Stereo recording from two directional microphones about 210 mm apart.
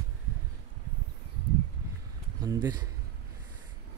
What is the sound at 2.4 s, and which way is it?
Speech, 15° right (ahead or behind).